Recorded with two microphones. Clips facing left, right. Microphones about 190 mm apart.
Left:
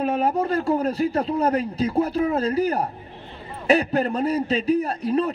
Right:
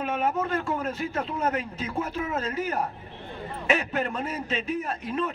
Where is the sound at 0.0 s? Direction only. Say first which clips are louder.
Left 5 dB; 35° left (ahead or behind).